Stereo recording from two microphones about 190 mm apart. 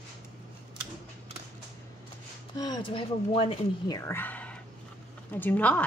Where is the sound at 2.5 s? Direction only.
20° left (ahead or behind).